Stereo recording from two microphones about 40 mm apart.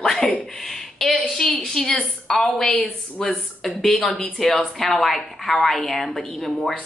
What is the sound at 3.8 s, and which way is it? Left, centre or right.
A woman's voice, centre.